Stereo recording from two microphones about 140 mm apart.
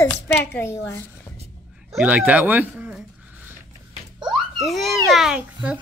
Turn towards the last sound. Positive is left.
turn(degrees=-5)  # may be behind; listen again after turning